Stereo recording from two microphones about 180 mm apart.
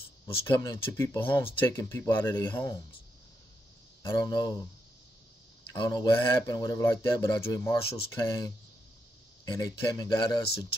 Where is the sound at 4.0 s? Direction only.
20° left (ahead or behind).